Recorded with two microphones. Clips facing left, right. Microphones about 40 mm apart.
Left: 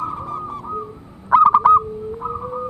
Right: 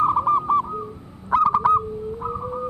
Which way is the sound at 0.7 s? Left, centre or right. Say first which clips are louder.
Left 3 dB; centre.